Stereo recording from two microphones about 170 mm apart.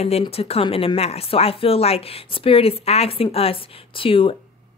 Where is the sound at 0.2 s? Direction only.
35° left (ahead or behind).